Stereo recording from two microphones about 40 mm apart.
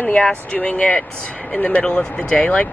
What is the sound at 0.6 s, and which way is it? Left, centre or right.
Speech, left.